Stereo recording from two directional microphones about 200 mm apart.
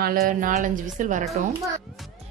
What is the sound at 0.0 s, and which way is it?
A woman's voice, 45° right (ahead or behind).